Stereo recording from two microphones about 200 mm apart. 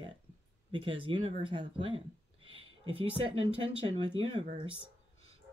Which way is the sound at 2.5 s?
25° right (ahead or behind).